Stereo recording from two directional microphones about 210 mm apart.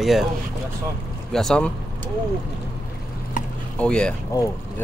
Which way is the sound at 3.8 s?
5° left (ahead or behind).